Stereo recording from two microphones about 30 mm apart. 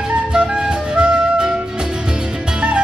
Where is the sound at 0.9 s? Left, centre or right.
Right.